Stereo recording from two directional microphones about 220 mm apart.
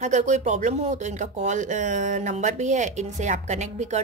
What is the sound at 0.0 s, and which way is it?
Speech, 35° right (ahead or behind).